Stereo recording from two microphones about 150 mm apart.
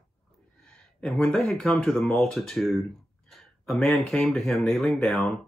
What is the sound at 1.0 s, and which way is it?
Speech, 5° left (ahead or behind).